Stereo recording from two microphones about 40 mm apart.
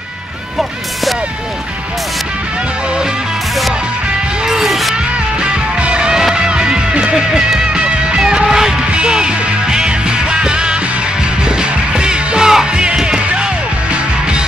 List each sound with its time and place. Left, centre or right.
4.5 s music: centre
4.9 s music: right